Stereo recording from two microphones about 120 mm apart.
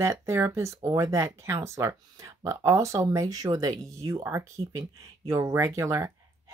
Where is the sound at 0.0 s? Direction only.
20° right (ahead or behind).